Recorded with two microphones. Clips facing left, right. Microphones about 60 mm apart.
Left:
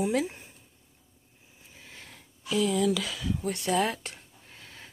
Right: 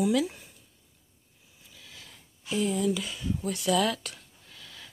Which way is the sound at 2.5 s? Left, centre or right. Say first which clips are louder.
Left 2 dB; left.